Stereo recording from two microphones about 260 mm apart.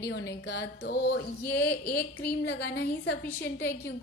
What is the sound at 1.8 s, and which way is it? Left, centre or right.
A woman's voice, left.